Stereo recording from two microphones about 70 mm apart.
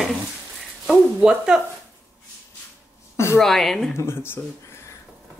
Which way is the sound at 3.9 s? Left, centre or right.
Left.